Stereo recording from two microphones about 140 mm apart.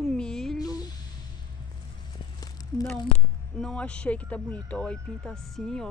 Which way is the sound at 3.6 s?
5° left (ahead or behind).